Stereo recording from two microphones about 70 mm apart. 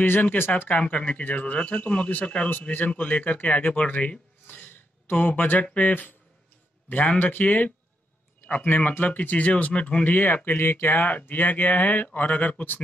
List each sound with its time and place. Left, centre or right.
0.0 s speech: left
4.5 s speech: left